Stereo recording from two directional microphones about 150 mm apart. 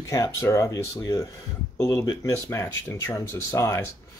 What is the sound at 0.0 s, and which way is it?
Speech, 20° left (ahead or behind).